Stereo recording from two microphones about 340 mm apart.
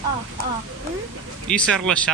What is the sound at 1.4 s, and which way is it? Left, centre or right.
Speech, centre.